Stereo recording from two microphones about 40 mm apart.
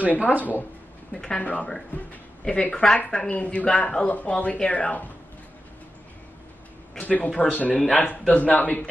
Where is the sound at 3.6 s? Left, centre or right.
Left.